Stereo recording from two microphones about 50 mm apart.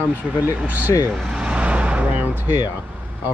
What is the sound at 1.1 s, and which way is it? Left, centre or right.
Vehicle, centre.